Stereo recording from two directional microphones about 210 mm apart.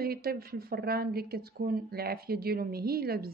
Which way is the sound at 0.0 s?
45° right (ahead or behind).